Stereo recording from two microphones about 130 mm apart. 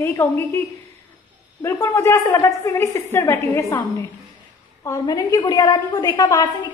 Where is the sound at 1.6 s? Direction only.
20° left (ahead or behind).